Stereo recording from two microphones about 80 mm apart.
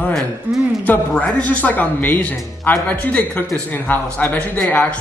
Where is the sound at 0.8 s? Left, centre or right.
Centre.